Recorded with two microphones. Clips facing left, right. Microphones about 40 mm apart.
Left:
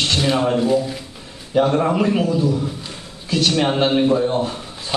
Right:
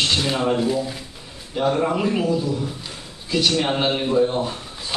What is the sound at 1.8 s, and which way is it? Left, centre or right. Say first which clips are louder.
Speech: left 3 dB; centre.